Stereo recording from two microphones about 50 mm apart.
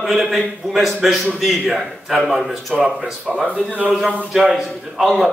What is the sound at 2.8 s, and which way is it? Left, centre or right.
Speech, centre.